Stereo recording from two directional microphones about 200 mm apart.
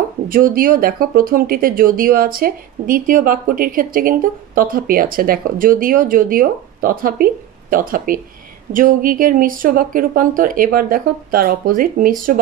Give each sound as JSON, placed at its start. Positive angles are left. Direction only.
{"t": 0.3, "sound": "speech", "side_deg": -45}